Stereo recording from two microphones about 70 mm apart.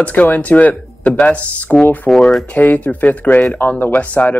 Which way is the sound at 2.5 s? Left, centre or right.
Left.